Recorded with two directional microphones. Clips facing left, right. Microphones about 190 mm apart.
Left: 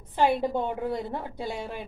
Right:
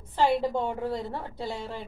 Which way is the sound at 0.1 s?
15° left (ahead or behind).